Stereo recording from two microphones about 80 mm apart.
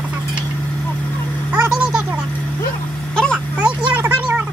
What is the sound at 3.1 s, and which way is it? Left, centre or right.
Vehicle, centre.